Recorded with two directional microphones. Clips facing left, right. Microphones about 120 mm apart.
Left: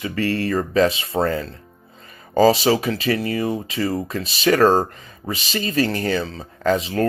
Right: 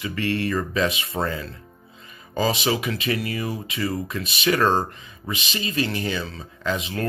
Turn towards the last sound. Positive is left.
turn(degrees=35)  # may be behind; listen again after turning